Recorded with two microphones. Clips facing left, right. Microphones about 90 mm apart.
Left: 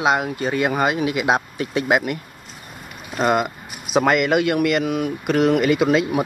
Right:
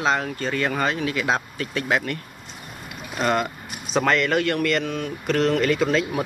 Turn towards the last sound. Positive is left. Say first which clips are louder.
# left 4 dB
turn(degrees=10)  # may be behind; listen again after turning